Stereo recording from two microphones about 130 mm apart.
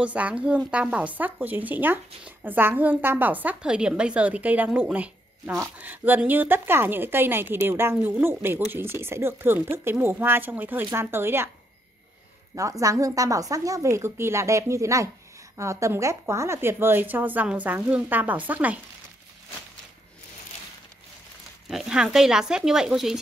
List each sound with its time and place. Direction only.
0.0 s speech: 10° right (ahead or behind)
12.5 s speech: 25° right (ahead or behind)
21.6 s speech: 5° right (ahead or behind)